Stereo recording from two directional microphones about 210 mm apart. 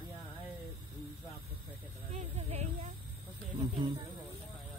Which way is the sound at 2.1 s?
30° right (ahead or behind).